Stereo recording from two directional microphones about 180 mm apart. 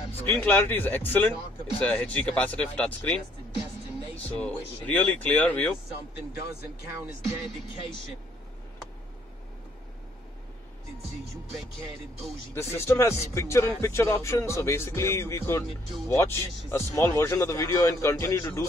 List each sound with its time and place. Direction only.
0.2 s speech: 10° left (ahead or behind)
4.2 s speech: 10° left (ahead or behind)
12.5 s speech: 15° left (ahead or behind)